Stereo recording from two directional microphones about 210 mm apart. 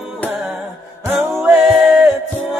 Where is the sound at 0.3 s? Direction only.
5° right (ahead or behind).